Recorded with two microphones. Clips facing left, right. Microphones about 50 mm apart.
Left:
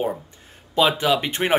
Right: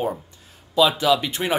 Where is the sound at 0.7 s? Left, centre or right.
Left.